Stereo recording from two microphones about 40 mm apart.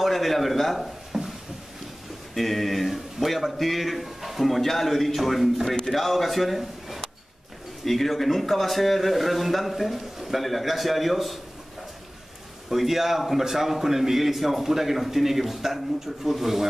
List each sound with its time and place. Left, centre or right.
0.0 s a man's voice: centre
1.1 s a sound: centre
2.3 s a man's voice: centre
12.6 s a man's voice: centre